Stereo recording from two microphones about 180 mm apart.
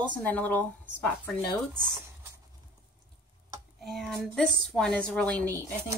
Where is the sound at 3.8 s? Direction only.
Centre (ahead or behind).